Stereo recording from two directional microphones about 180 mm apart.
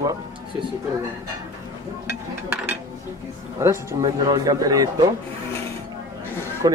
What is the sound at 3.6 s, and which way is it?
Speech, 15° right (ahead or behind).